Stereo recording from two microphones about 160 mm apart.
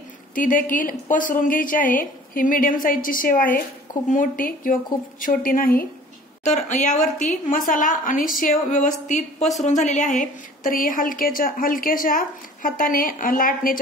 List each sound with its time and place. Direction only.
0.3 s a woman's voice: 55° left (ahead or behind)
6.4 s a woman's voice: 50° left (ahead or behind)